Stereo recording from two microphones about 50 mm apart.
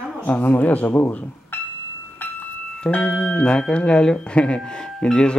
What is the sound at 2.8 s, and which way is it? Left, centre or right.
Speech, left.